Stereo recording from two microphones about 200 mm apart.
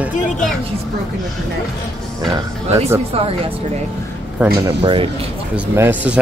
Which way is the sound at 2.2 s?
15° right (ahead or behind).